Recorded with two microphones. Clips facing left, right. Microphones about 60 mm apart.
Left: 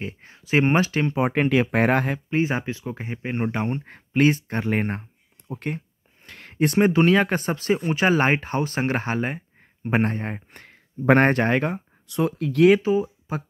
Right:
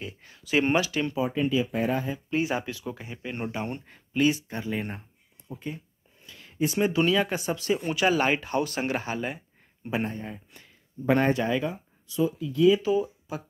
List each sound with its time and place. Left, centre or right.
0.0 s speech: left
1.2 s speech: left
2.1 s speech: left
3.8 s speech: left
9.8 s speech: left
12.8 s speech: left